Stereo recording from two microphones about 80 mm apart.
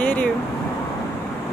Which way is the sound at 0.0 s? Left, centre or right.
Centre.